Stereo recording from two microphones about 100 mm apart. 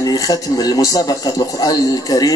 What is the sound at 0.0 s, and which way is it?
A man's voice, 40° left (ahead or behind).